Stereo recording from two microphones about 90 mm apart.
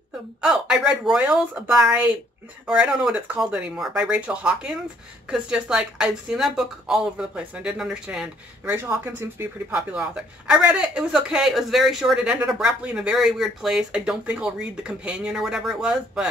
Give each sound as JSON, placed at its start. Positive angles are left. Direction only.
{"t": 0.4, "sound": "a woman's voice", "side_deg": -5}
{"t": 8.6, "sound": "speech", "side_deg": -20}
{"t": 9.8, "sound": "speech", "side_deg": -10}